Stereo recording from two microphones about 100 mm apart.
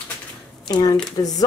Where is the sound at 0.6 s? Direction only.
45° left (ahead or behind).